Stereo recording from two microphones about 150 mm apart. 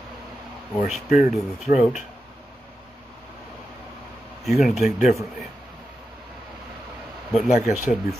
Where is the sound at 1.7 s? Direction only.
70° left (ahead or behind).